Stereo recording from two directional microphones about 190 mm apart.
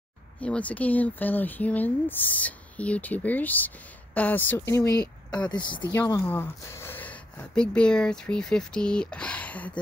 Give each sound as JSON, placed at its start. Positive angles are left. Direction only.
{"t": 0.4, "sound": "speech", "side_deg": 5}
{"t": 5.9, "sound": "speech", "side_deg": 15}